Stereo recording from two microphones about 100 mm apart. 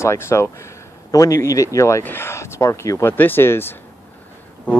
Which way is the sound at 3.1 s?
20° left (ahead or behind).